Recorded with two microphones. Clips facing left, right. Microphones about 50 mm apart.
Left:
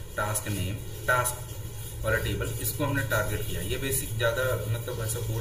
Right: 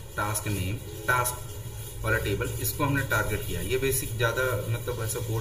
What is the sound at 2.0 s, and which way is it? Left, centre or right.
Speech, centre.